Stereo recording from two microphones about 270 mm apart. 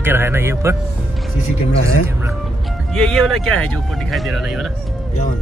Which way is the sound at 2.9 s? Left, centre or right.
Centre.